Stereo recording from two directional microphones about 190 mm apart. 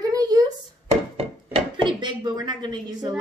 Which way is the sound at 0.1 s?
20° right (ahead or behind).